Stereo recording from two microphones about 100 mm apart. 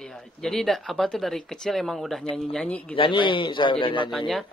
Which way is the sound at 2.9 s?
55° left (ahead or behind).